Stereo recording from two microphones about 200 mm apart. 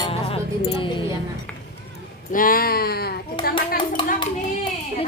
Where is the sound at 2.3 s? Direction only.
45° left (ahead or behind).